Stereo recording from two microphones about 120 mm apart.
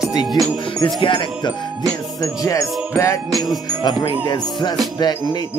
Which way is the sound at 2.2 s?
30° left (ahead or behind).